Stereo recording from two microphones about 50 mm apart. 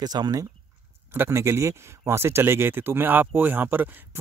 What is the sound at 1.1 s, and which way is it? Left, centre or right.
Speech, right.